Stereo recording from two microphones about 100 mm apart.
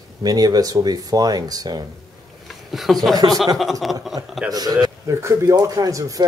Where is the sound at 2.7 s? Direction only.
Centre (ahead or behind).